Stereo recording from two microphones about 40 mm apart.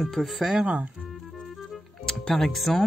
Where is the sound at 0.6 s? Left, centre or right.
Right.